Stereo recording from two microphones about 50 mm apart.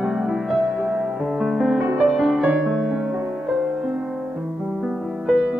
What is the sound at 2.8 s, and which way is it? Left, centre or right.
Music, centre.